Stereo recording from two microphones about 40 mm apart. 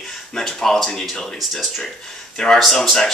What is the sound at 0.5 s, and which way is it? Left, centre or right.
A man's voice, centre.